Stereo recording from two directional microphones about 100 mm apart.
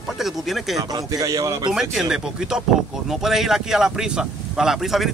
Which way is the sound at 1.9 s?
5° right (ahead or behind).